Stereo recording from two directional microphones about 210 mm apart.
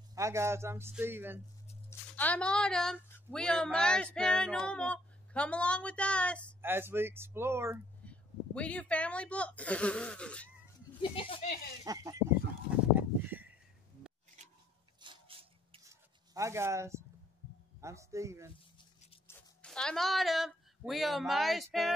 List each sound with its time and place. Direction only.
0.1 s a man's voice: 15° right (ahead or behind)
1.9 s speech: 10° left (ahead or behind)
6.6 s a man's voice: 10° right (ahead or behind)
8.0 s speech: 5° left (ahead or behind)
11.0 s speech: 25° left (ahead or behind)
11.8 s a man's voice: 15° right (ahead or behind)
12.9 s a sound: 10° right (ahead or behind)
14.4 s a sound: 35° right (ahead or behind)
15.8 s a sound: 15° right (ahead or behind)
17.7 s a man's voice: 15° right (ahead or behind)
19.2 s speech: 5° left (ahead or behind)